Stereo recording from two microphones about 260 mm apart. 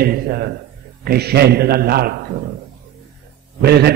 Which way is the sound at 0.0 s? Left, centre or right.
Right.